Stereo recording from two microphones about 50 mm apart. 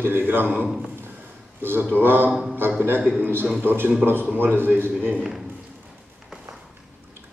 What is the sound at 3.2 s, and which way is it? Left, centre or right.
A man's voice, right.